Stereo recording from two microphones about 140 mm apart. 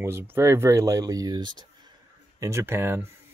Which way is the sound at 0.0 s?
15° right (ahead or behind).